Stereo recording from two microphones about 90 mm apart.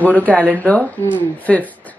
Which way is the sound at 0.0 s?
15° left (ahead or behind).